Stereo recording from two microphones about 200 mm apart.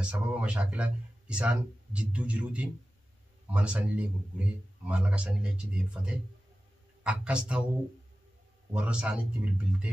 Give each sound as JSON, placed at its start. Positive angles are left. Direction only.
{"t": 0.0, "sound": "a man's voice", "side_deg": -5}
{"t": 8.7, "sound": "a man's voice", "side_deg": -5}